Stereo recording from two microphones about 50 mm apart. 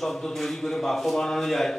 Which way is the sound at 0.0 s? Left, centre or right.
Centre.